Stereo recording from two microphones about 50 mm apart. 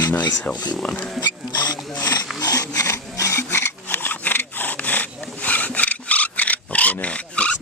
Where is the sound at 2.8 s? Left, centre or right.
Left.